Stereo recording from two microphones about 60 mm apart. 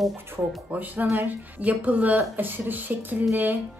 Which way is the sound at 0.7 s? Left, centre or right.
Right.